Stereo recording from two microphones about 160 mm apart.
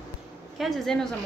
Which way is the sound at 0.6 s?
Centre (ahead or behind).